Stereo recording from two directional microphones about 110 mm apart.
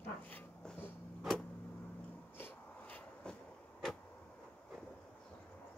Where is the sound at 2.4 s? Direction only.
15° left (ahead or behind).